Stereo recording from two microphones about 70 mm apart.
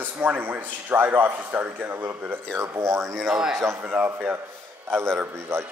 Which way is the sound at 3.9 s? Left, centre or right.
Right.